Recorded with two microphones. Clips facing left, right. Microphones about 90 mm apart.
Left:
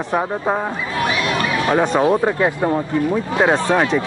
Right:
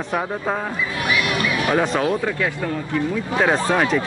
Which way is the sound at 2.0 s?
30° left (ahead or behind).